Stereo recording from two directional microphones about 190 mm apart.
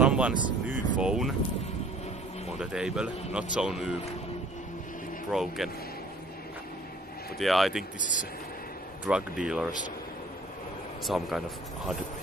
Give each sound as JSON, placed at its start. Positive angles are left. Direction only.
{"t": 0.0, "sound": "a sound", "side_deg": -5}
{"t": 0.3, "sound": "speech", "side_deg": 45}
{"t": 0.7, "sound": "vehicle", "side_deg": -5}
{"t": 2.6, "sound": "speech", "side_deg": -5}
{"t": 5.3, "sound": "speech", "side_deg": 0}
{"t": 7.3, "sound": "speech", "side_deg": 0}
{"t": 8.0, "sound": "speech", "side_deg": 40}
{"t": 9.0, "sound": "speech", "side_deg": -5}
{"t": 11.1, "sound": "speech", "side_deg": 0}